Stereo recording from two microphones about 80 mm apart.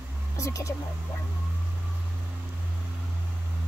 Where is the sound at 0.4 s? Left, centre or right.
Left.